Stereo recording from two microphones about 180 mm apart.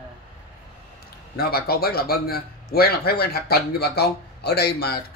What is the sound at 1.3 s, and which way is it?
A man's voice, 60° left (ahead or behind).